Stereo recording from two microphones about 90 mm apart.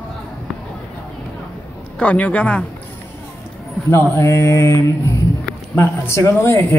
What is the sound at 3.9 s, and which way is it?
Mantra, 30° left (ahead or behind).